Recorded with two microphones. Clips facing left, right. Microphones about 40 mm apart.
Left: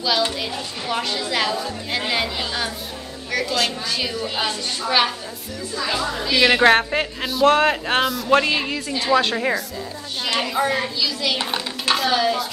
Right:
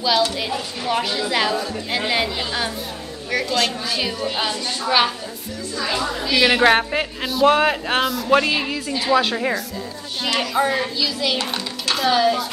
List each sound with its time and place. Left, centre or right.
0.4 s a woman's voice: centre
11.3 s dishes: centre
12.0 s a woman's voice: centre